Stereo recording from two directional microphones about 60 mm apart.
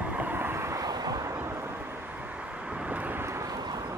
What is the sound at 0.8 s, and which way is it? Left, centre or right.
Vehicle, right.